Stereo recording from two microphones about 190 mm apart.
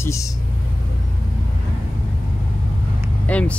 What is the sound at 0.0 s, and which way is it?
Speech, 15° left (ahead or behind).